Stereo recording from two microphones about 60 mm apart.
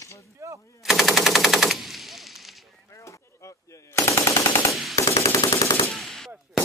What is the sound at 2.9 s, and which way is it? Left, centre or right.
Machine gun, left.